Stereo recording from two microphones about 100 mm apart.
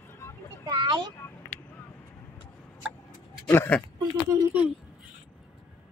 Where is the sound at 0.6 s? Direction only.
50° right (ahead or behind).